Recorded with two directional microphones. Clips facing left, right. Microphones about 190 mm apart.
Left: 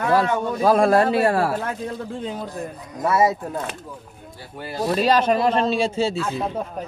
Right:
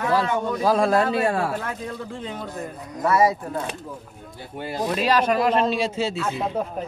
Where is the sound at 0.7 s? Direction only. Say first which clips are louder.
Left 4 dB; 55° left (ahead or behind).